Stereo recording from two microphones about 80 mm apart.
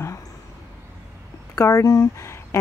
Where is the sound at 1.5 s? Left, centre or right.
Left.